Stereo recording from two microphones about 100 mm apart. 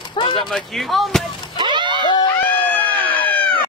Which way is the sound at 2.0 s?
50° left (ahead or behind).